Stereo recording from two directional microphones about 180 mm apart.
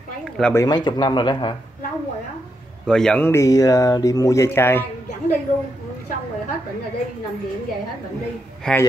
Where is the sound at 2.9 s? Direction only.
5° left (ahead or behind).